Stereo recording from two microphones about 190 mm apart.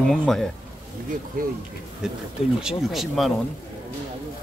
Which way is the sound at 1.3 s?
45° right (ahead or behind).